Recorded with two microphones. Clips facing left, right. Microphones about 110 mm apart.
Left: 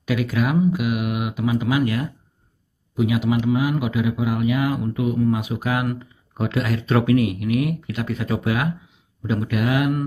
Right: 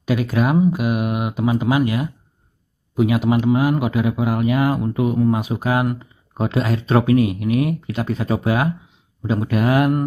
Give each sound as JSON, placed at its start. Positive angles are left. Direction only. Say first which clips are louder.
{"t": 0.0, "sound": "speech", "louder": "right 3 dB", "side_deg": -30}
{"t": 3.0, "sound": "speech", "louder": "right 3 dB", "side_deg": -50}